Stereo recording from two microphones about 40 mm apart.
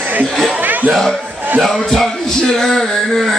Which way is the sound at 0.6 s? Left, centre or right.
Right.